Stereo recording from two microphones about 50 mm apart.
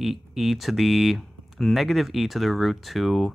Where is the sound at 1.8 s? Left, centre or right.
Centre.